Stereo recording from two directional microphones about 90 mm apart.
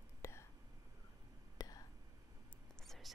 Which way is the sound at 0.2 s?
30° left (ahead or behind).